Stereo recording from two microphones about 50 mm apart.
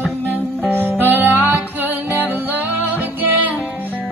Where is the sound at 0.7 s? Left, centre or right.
Right.